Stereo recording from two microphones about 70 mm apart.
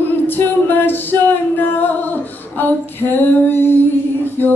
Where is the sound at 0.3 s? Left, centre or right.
Left.